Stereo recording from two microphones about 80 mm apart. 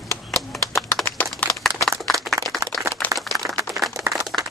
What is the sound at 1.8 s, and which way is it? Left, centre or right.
Clapping, centre.